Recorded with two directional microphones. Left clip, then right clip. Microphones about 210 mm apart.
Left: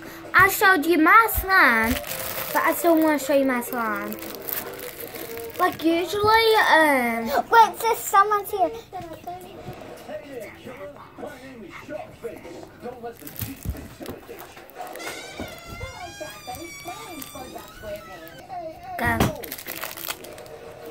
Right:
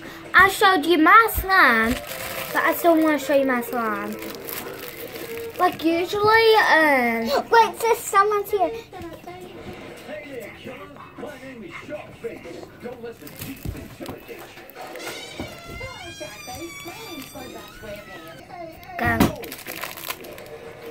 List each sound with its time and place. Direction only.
0.3 s speech: 10° left (ahead or behind)
5.6 s speech: 15° left (ahead or behind)
7.2 s a child's voice: 5° right (ahead or behind)
18.9 s a sound: 20° left (ahead or behind)